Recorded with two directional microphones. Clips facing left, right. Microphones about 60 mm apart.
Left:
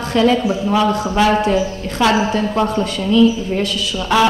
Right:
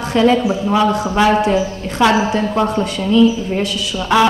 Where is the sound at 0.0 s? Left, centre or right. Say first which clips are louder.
Right 1 dB; right.